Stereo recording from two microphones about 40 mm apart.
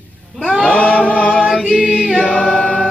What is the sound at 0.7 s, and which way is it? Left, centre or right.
Singing, left.